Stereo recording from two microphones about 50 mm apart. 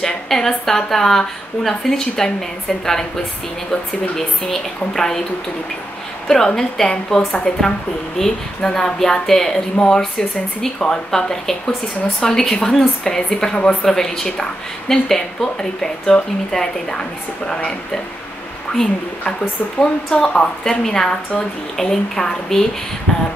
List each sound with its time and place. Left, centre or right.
0.0 s a woman's voice: centre
4.5 s a woman's voice: centre
6.2 s a woman's voice: centre
13.8 s a woman's voice: centre